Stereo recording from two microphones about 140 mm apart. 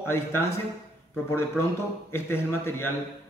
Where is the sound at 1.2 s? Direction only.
15° left (ahead or behind).